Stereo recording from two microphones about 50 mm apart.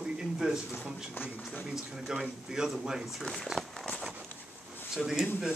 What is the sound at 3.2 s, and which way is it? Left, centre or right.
Speech, centre.